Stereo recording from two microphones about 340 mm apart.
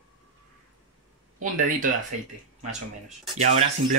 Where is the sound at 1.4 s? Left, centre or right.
Right.